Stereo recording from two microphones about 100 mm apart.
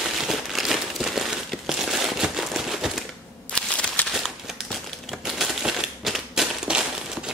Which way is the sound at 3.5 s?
10° left (ahead or behind).